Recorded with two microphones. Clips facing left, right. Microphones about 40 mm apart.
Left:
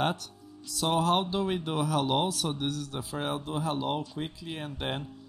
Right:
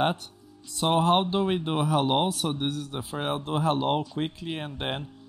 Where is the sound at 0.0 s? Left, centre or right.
Right.